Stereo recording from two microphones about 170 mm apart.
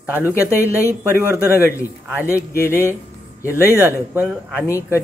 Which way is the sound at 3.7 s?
15° right (ahead or behind).